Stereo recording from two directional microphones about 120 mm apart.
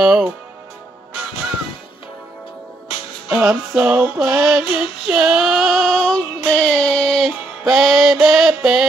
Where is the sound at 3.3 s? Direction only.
25° right (ahead or behind).